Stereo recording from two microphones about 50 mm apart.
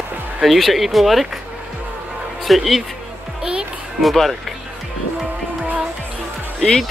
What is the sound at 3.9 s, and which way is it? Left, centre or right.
Speech, centre.